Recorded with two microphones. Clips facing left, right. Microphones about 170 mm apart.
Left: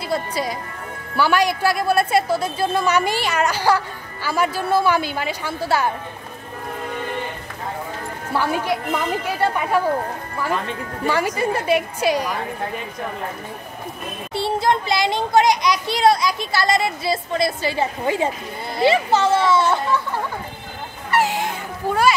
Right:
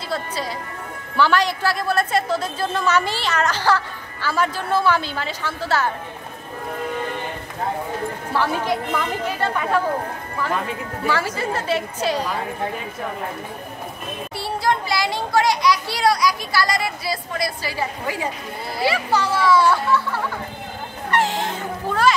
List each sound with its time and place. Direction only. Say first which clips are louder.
0.1 s a woman's voice: left 3 dB; 15° left (ahead or behind)
9.4 s a woman's voice: left 2 dB; 10° left (ahead or behind)
11.1 s a woman's voice: left 3 dB; 15° left (ahead or behind)
14.3 s a child's voice: left 3 dB; 25° left (ahead or behind)
21.1 s cat: left 1 dB; 10° left (ahead or behind)